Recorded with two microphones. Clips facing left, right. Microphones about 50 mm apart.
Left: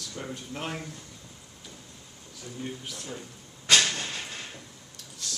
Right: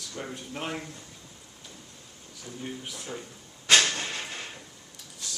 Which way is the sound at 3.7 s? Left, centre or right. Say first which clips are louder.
Right 1 dB; centre.